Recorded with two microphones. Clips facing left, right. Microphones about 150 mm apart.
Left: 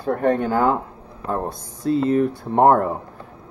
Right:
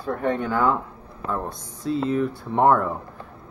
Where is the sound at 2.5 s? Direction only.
40° left (ahead or behind).